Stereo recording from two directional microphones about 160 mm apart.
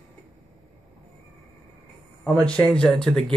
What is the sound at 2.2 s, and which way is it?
Speech, 5° left (ahead or behind).